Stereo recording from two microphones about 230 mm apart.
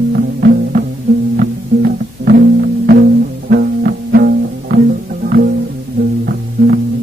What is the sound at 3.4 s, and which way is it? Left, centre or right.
Music, right.